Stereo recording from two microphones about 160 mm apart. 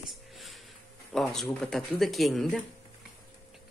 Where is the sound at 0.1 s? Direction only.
Centre (ahead or behind).